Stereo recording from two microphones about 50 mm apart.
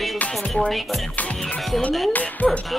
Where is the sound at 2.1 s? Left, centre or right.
Left.